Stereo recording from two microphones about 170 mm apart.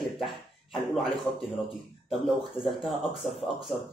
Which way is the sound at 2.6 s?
Centre (ahead or behind).